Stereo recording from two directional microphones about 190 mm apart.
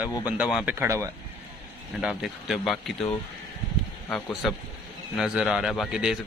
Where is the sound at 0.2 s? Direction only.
5° right (ahead or behind).